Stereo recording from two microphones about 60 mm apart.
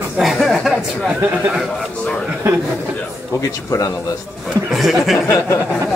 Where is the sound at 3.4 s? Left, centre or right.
Left.